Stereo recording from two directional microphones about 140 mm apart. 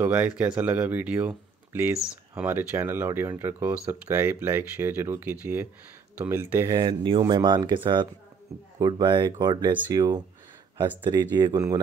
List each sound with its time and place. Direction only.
0.0 s speech: 10° right (ahead or behind)
6.8 s speech: 35° right (ahead or behind)